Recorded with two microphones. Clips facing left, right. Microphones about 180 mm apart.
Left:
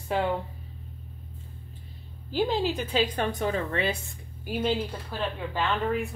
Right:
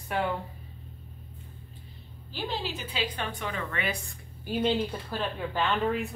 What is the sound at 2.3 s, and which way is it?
Speech, 45° left (ahead or behind).